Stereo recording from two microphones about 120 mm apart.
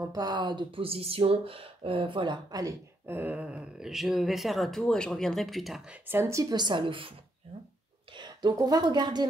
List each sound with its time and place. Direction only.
0.0 s speech: 30° right (ahead or behind)
2.6 s speech: 25° right (ahead or behind)
3.2 s speech: 15° right (ahead or behind)
6.0 s speech: 20° right (ahead or behind); by 7.2 s 45° right (ahead or behind)
8.2 s a woman's voice: 35° right (ahead or behind)